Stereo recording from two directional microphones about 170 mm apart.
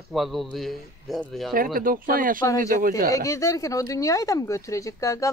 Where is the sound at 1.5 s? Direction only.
55° right (ahead or behind).